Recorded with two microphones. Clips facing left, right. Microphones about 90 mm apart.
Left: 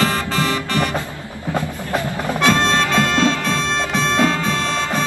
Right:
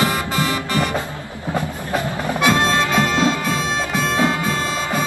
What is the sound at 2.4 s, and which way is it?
Music, 15° right (ahead or behind).